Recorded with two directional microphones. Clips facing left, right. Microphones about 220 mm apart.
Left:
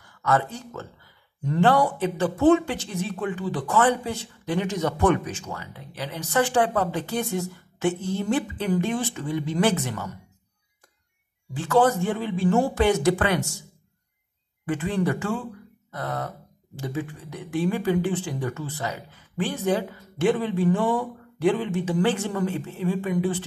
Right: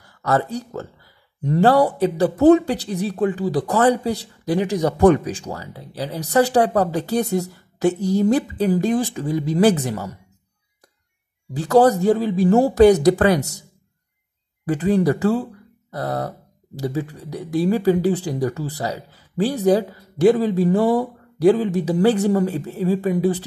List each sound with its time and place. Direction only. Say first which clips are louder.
0.0 s speech: right 3 dB; 40° right (ahead or behind)
11.5 s speech: right 6 dB; 40° right (ahead or behind)
14.7 s speech: right 7 dB; 35° right (ahead or behind)